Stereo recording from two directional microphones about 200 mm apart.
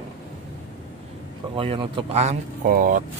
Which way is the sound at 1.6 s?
25° right (ahead or behind).